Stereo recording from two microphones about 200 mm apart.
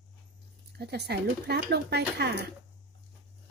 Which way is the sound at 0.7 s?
55° right (ahead or behind).